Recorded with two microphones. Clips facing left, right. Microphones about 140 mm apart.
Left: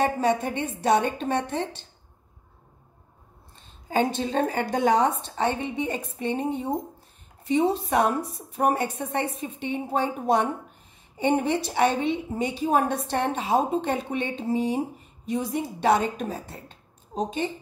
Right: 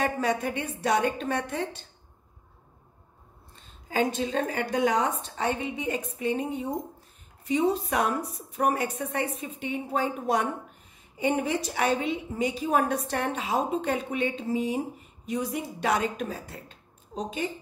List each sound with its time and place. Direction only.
0.0 s a woman's voice: 30° left (ahead or behind)
3.9 s a woman's voice: 30° left (ahead or behind)